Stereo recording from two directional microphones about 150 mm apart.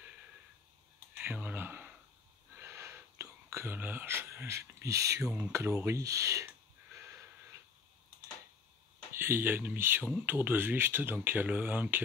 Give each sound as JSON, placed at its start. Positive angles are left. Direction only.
{"t": 1.1, "sound": "a sound", "side_deg": -10}
{"t": 2.5, "sound": "speech", "side_deg": -15}
{"t": 9.1, "sound": "speech", "side_deg": -15}